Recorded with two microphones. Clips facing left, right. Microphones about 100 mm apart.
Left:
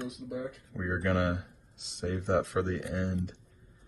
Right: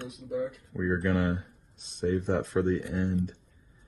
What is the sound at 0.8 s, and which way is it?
Speech, 90° left.